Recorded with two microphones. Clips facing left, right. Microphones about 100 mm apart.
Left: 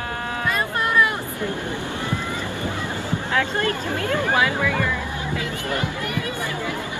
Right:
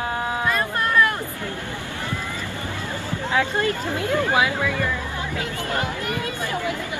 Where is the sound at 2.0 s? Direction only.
20° left (ahead or behind).